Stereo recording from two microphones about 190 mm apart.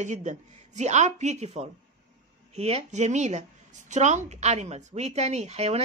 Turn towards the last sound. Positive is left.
turn(degrees=-35)  # may be behind; listen again after turning